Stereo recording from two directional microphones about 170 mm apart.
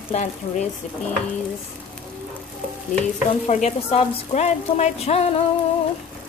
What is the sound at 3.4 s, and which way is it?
Frying, 40° left (ahead or behind).